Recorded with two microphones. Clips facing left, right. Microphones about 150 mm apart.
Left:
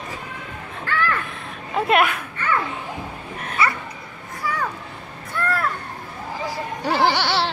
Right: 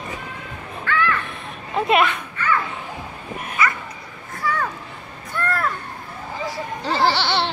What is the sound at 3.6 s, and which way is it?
Bow-wow, 30° left (ahead or behind).